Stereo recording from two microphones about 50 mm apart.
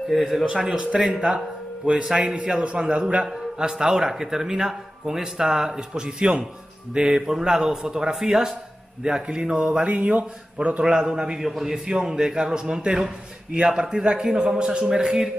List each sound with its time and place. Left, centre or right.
0.1 s a man's voice: centre
0.7 s a man's voice: centre